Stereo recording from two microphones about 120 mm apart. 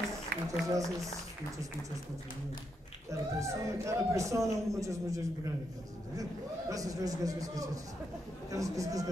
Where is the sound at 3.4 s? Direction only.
25° right (ahead or behind).